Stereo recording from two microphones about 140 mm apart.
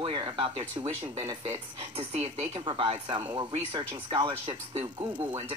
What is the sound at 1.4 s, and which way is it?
Speech, 50° right (ahead or behind).